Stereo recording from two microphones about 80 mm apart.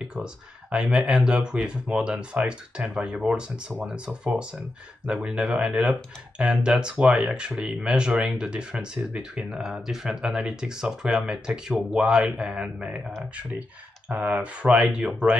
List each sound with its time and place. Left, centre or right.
0.1 s speech: centre
14.0 s speech: centre